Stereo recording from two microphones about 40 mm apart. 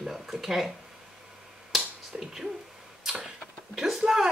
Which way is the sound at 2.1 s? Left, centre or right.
Right.